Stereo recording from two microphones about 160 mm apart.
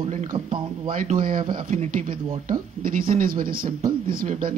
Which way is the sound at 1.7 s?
50° right (ahead or behind).